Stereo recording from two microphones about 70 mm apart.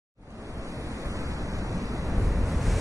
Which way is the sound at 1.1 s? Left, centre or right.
Right.